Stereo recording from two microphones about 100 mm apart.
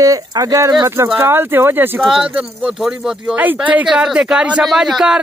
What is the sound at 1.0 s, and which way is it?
Speech, 20° right (ahead or behind).